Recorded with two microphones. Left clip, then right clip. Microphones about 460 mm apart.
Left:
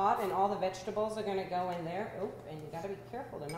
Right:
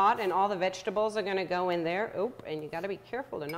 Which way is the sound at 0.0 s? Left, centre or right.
Right.